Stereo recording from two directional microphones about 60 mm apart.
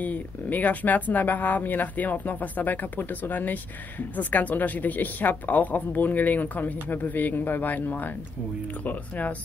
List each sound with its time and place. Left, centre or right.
0.0 s speech: left